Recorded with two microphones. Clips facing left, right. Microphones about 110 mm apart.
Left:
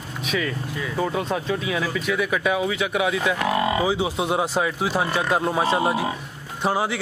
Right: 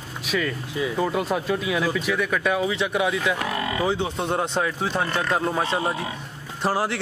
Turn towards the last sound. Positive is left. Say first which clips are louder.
# left 1 dB
turn(degrees=0)  # may be behind; listen again after turning